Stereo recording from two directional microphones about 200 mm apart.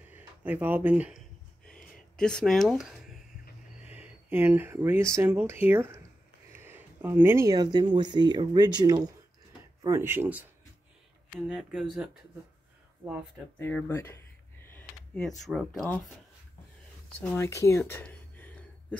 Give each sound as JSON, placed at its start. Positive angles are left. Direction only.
{"t": 0.1, "sound": "speech", "side_deg": -10}
{"t": 2.1, "sound": "speech", "side_deg": 5}
{"t": 13.6, "sound": "speech", "side_deg": 10}
{"t": 17.2, "sound": "a sound", "side_deg": 10}